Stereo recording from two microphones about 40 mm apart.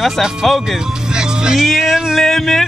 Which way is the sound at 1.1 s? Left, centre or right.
Centre.